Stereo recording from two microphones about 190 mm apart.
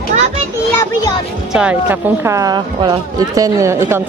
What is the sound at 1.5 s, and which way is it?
A woman's voice, 5° right (ahead or behind).